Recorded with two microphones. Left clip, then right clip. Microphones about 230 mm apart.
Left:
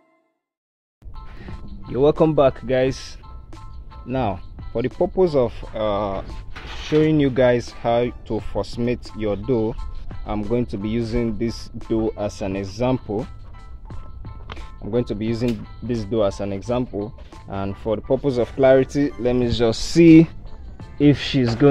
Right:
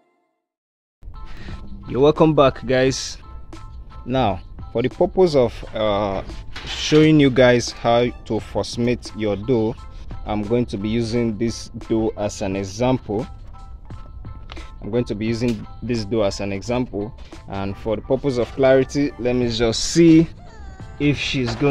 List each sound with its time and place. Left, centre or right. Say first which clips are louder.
1.4 s speech: right 1 dB; centre
6.8 s speech: right 4 dB; right; by 13.3 s centre
14.5 s speech: even; centre
20.1 s speech: left 2 dB; left